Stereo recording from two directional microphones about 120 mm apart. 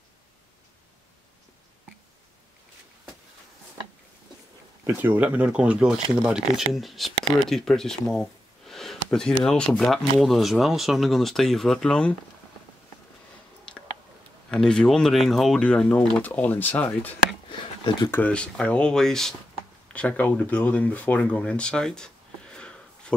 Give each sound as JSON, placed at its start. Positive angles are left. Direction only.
{"t": 4.8, "sound": "speech", "side_deg": -20}
{"t": 14.5, "sound": "speech", "side_deg": 5}
{"t": 17.5, "sound": "a sound", "side_deg": 40}
{"t": 18.1, "sound": "speech", "side_deg": 10}